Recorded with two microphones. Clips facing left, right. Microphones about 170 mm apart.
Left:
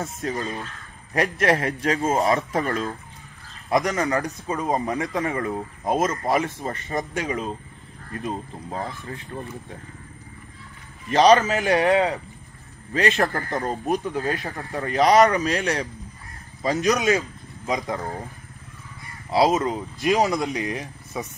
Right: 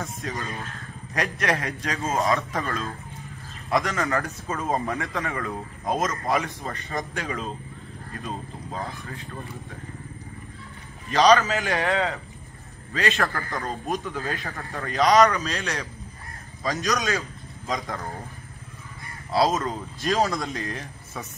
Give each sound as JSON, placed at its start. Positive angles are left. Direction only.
{"t": 0.0, "sound": "a man's voice", "side_deg": 25}
{"t": 11.1, "sound": "a man's voice", "side_deg": 25}
{"t": 13.2, "sound": "a man's voice", "side_deg": 35}
{"t": 16.6, "sound": "a man's voice", "side_deg": 20}
{"t": 19.3, "sound": "speech", "side_deg": 20}